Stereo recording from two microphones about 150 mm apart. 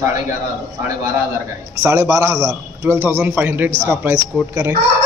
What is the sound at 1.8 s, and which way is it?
A man's voice, 20° right (ahead or behind).